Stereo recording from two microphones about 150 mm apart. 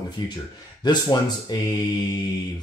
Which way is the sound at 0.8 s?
30° left (ahead or behind).